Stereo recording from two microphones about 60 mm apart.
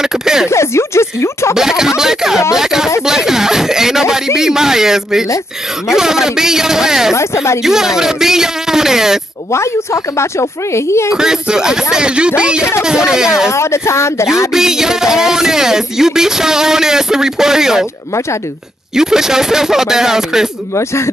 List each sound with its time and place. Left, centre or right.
0.0 s a sound: centre
0.5 s speech: left
1.5 s music: centre
3.1 s a sound: centre
4.4 s music: centre
7.2 s speech: left
7.6 s music: centre
9.5 s speech: left
11.1 s music: centre
13.5 s speech: left
14.5 s music: centre
18.9 s music: centre
20.7 s speech: left